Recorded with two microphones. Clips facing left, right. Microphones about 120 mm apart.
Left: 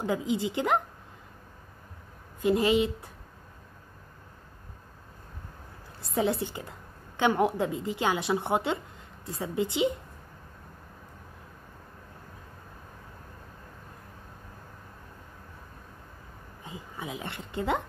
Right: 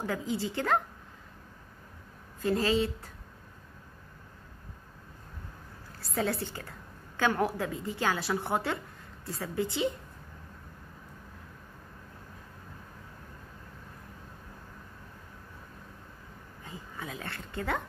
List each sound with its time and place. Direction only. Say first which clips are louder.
0.0 s a woman's voice: left 4 dB; 20° left (ahead or behind)
2.4 s speech: left 4 dB; 15° left (ahead or behind)
5.9 s a woman's voice: left 4 dB; 20° left (ahead or behind)
16.6 s speech: left 3 dB; 15° left (ahead or behind)